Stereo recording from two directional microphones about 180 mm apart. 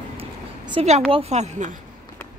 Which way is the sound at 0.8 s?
40° right (ahead or behind).